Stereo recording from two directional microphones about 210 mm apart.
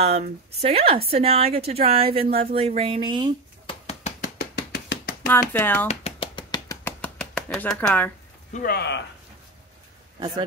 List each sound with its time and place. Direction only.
0.0 s a woman's voice: 30° right (ahead or behind)
3.6 s a sound: 30° left (ahead or behind)
4.7 s hands: 50° left (ahead or behind)
5.2 s speech: 10° left (ahead or behind)
5.9 s a sound: 30° left (ahead or behind); by 8.1 s 5° left (ahead or behind)
8.5 s speech: 50° left (ahead or behind)
10.1 s speech: 25° right (ahead or behind)